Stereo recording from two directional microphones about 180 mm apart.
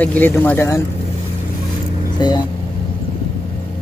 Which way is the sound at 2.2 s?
25° left (ahead or behind).